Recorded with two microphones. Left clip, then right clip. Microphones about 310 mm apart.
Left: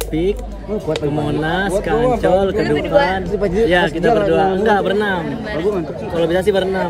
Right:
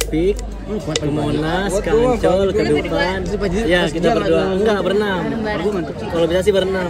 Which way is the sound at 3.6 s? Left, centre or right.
Centre.